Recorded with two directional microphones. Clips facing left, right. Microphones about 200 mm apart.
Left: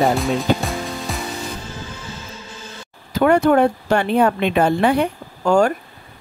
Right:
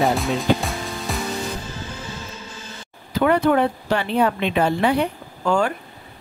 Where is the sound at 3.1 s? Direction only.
45° left (ahead or behind).